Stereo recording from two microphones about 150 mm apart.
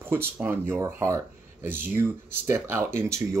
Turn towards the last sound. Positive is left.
turn(degrees=-20)  # may be behind; listen again after turning